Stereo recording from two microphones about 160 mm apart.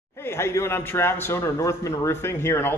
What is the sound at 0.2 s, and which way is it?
A man's voice, 15° left (ahead or behind).